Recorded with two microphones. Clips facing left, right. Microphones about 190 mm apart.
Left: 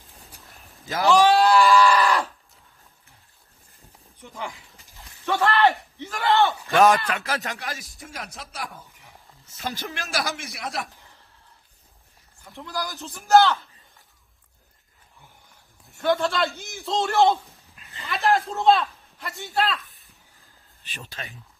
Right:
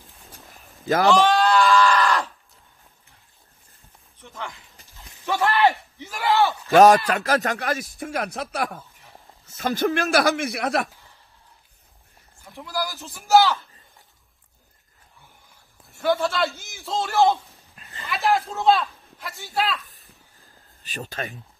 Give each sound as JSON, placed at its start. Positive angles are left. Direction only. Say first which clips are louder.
{"t": 0.8, "sound": "a man's voice", "louder": "right 4 dB", "side_deg": -55}
{"t": 1.2, "sound": "goat", "louder": "left 2 dB", "side_deg": 5}
{"t": 4.2, "sound": "a sound", "louder": "left 1 dB", "side_deg": 10}
{"t": 5.0, "sound": "speech", "louder": "even", "side_deg": -15}
{"t": 5.9, "sound": "a sound", "louder": "even", "side_deg": -10}
{"t": 6.7, "sound": "speech", "louder": "right 6 dB", "side_deg": -40}
{"t": 7.7, "sound": "a man's voice", "louder": "right 11 dB", "side_deg": 0}
{"t": 8.0, "sound": "a man's voice", "louder": "right 10 dB", "side_deg": -60}
{"t": 12.5, "sound": "a man's voice", "louder": "right 2 dB", "side_deg": 0}
{"t": 15.9, "sound": "a man's voice", "louder": "even", "side_deg": 0}
{"t": 20.9, "sound": "speech", "louder": "right 8 dB", "side_deg": -45}